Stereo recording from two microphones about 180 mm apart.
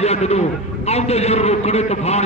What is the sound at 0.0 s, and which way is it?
A man's voice, 35° left (ahead or behind).